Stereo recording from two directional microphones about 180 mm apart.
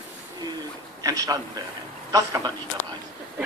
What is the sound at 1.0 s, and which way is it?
A man's voice, 20° right (ahead or behind).